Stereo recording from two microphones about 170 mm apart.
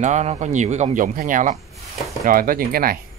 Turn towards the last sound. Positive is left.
turn(degrees=-60)  # may be behind; listen again after turning